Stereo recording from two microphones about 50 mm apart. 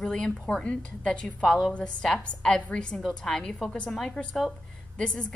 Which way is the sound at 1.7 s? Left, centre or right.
Left.